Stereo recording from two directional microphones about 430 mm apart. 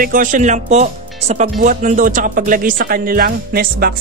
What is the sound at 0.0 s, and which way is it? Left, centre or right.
Speech, centre.